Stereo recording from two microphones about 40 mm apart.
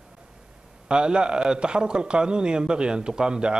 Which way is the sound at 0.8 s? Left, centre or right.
Right.